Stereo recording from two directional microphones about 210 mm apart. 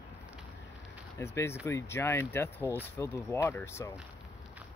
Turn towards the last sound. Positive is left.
turn(degrees=10)  # may be behind; listen again after turning